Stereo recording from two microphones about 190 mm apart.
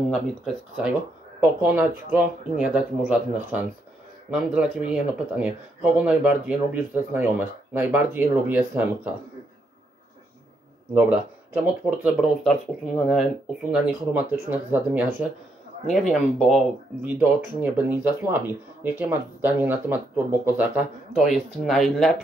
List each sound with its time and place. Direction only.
0.1 s speech: 5° right (ahead or behind)
11.0 s speech: 5° right (ahead or behind)
15.9 s speech: centre (ahead or behind)